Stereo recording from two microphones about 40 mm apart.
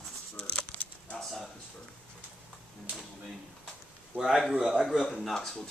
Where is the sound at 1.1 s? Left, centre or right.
Centre.